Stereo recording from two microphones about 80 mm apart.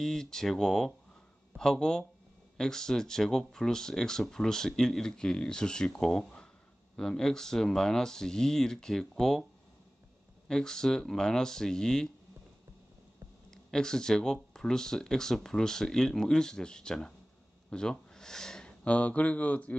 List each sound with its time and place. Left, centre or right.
0.0 s speech: centre
10.5 s speech: centre
13.5 s speech: centre